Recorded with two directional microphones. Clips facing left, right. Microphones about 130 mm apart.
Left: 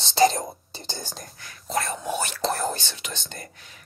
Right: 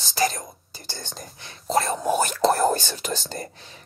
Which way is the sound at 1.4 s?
25° right (ahead or behind).